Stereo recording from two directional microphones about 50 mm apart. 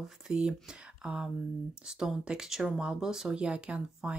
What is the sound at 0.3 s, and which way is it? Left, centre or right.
A woman's voice, centre.